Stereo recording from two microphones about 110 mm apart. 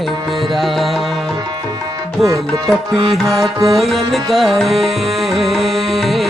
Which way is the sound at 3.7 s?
Centre (ahead or behind).